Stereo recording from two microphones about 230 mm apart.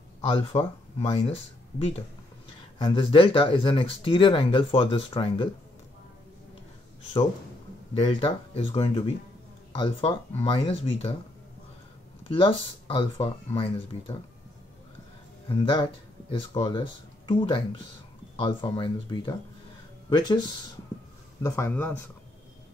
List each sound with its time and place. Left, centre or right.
0.2 s speech: left
8.0 s speech: left
12.3 s speech: left
15.4 s speech: left